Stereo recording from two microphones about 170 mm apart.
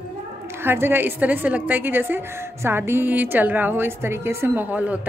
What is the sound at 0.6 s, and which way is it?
A woman's voice, 15° right (ahead or behind).